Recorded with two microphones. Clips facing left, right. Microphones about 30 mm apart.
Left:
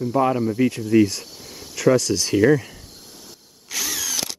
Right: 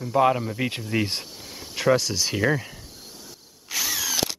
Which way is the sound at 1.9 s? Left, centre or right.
Centre.